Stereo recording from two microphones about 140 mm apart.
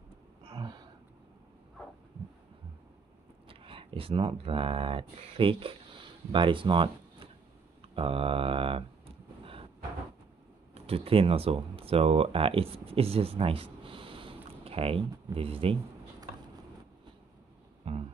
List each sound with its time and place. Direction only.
0.4 s gasp: 35° right (ahead or behind)
3.4 s speech: 40° right (ahead or behind)
7.9 s a sound: 40° right (ahead or behind)
10.7 s speech: 45° right (ahead or behind)
17.8 s music: 45° right (ahead or behind)